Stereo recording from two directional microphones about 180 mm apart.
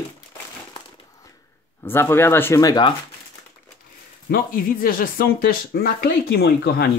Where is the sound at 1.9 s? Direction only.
10° left (ahead or behind).